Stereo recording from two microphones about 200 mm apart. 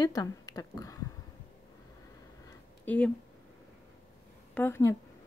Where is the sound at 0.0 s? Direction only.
20° left (ahead or behind).